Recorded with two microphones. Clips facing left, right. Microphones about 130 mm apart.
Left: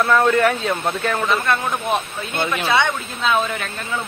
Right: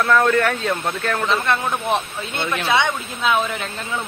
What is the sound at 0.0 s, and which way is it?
A man's voice, centre (ahead or behind).